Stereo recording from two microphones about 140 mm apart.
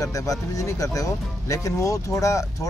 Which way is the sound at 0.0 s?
25° left (ahead or behind).